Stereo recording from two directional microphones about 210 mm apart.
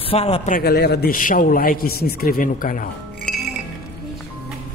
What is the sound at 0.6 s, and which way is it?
A man's voice, 50° left (ahead or behind).